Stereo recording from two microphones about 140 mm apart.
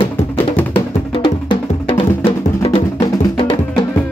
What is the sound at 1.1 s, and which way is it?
Music, 40° left (ahead or behind).